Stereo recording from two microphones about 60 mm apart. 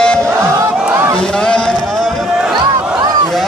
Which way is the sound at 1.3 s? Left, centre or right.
Centre.